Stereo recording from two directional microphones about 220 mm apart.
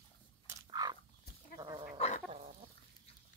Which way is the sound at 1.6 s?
20° right (ahead or behind).